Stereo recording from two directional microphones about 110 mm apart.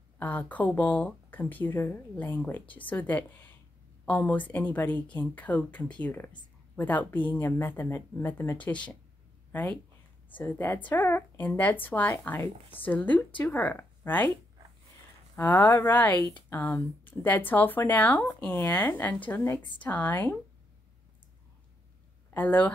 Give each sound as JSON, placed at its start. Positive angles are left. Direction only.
{"t": 0.2, "sound": "speech", "side_deg": 15}
{"t": 15.3, "sound": "speech", "side_deg": 20}
{"t": 22.3, "sound": "speech", "side_deg": 15}